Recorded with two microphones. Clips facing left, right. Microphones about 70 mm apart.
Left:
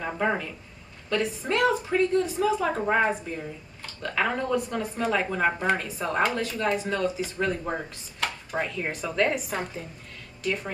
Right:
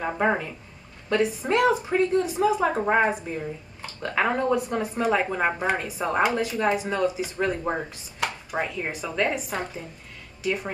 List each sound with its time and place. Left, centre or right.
0.0 s a woman's voice: centre
8.5 s a woman's voice: centre